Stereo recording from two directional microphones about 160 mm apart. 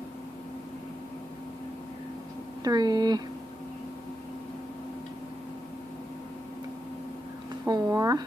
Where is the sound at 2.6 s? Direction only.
25° right (ahead or behind).